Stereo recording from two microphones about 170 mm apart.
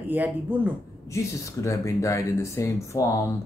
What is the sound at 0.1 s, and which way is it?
Speech, 10° right (ahead or behind).